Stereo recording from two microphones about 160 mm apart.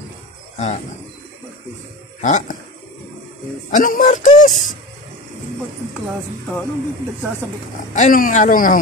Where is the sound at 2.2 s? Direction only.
50° left (ahead or behind).